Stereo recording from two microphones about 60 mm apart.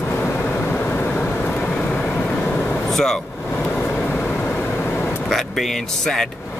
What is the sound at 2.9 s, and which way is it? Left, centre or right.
Speech, centre.